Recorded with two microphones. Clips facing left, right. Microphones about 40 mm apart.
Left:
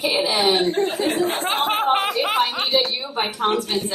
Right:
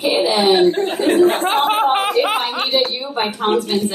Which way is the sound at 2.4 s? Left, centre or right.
Right.